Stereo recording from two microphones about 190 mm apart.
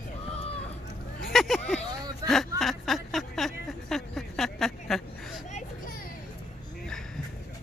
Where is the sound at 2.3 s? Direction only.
Centre (ahead or behind).